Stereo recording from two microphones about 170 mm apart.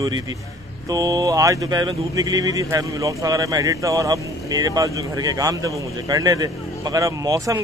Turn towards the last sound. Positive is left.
turn(degrees=-20)  # may be behind; listen again after turning